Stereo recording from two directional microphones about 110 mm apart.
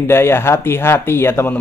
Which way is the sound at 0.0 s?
20° left (ahead or behind).